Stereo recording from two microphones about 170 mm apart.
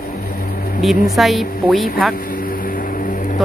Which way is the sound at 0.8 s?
Centre (ahead or behind).